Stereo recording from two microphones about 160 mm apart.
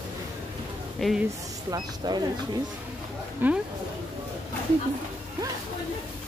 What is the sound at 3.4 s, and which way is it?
Speech, 10° right (ahead or behind).